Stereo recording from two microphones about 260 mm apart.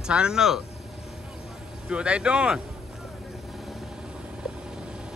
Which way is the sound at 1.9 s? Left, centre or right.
Centre.